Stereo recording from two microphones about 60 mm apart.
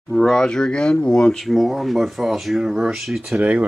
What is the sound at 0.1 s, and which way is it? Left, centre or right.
Speech, centre.